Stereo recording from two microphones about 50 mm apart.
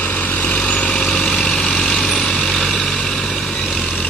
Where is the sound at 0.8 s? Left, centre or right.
Centre.